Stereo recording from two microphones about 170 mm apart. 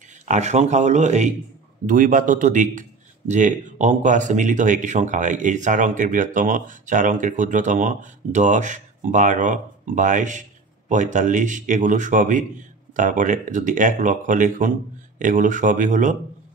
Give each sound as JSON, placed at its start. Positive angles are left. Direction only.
{"t": 0.2, "sound": "a man's voice", "side_deg": -45}